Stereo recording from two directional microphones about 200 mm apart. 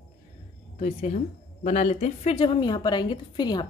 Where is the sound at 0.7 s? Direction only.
40° left (ahead or behind).